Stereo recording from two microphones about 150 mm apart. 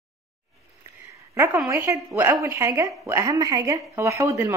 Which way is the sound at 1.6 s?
15° right (ahead or behind).